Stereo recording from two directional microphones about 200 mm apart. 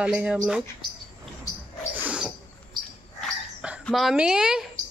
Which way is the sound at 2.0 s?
5° right (ahead or behind).